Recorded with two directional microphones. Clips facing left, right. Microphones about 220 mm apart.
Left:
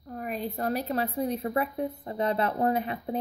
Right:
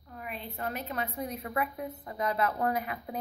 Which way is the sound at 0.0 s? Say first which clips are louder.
Left 8 dB; 40° left (ahead or behind).